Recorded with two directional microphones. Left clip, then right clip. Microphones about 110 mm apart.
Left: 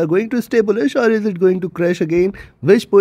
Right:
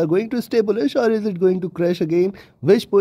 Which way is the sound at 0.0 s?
30° left (ahead or behind).